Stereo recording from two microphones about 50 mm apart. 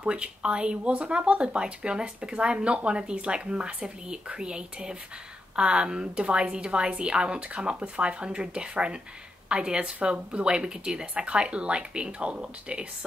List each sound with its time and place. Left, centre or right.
0.0 s speech: right